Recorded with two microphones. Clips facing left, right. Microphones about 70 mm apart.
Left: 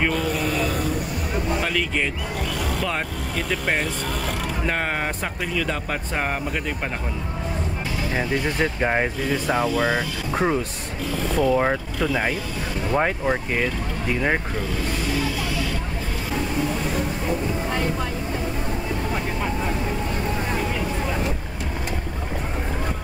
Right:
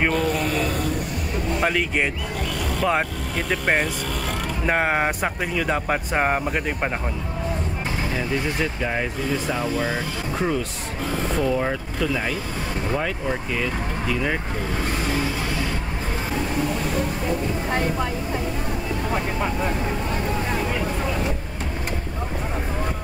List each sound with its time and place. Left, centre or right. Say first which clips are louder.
0.1 s a sound: right 1 dB; centre
1.7 s speech: right 1 dB; right
3.4 s speech: right 3 dB; centre
8.2 s speech: left 3 dB; left